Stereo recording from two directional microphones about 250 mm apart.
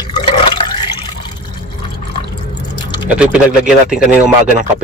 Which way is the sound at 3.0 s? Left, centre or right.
Centre.